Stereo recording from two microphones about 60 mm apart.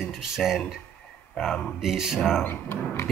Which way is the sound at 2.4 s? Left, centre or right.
Left.